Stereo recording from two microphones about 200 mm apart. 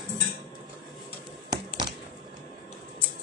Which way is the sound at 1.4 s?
20° right (ahead or behind).